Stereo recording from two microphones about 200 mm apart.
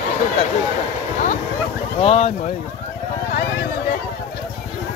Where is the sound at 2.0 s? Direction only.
30° left (ahead or behind).